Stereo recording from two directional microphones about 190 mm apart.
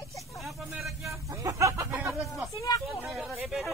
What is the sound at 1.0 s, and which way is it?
Speech, 15° right (ahead or behind).